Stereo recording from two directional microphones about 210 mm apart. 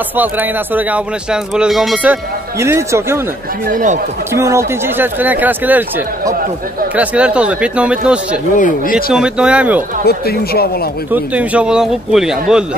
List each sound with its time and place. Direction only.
0.1 s speech: 10° right (ahead or behind)
2.6 s speech: 10° right (ahead or behind)
3.6 s speech: 35° right (ahead or behind)
4.3 s speech: 15° right (ahead or behind)
8.5 s speech: 40° left (ahead or behind)
9.1 s speech: 5° right (ahead or behind)
10.0 s speech: 50° left (ahead or behind)
11.1 s speech: 5° right (ahead or behind)